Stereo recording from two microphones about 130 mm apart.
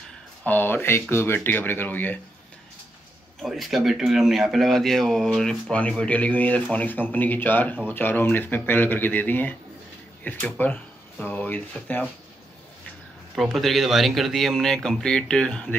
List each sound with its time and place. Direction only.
0.5 s speech: 15° left (ahead or behind)
3.4 s speech: centre (ahead or behind)
13.3 s speech: centre (ahead or behind)